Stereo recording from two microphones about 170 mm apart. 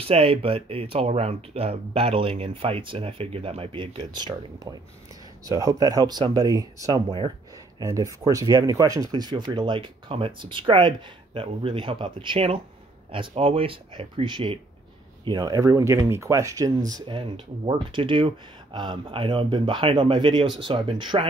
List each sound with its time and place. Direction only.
0.0 s speech: 35° right (ahead or behind)
7.1 s speech: 30° right (ahead or behind)
7.8 s speech: 20° right (ahead or behind)